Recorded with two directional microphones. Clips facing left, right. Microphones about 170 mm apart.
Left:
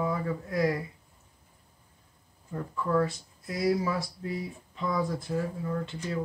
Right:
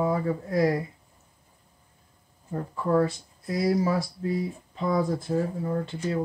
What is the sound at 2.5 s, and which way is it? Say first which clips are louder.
Speech: right 4 dB; 35° right (ahead or behind).